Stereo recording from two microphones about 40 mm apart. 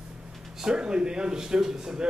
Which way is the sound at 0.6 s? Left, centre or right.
Centre.